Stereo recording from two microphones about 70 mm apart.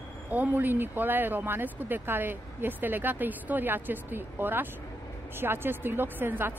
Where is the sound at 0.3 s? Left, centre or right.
Right.